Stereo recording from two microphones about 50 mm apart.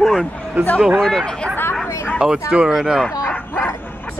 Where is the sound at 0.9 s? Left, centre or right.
Centre.